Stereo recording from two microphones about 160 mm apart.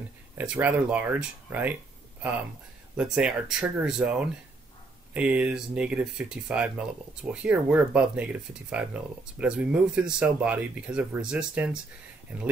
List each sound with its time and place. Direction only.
0.4 s speech: 10° right (ahead or behind)
3.0 s speech: 5° right (ahead or behind)